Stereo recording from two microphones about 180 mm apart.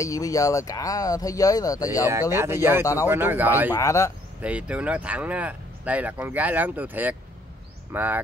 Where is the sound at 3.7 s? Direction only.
15° left (ahead or behind).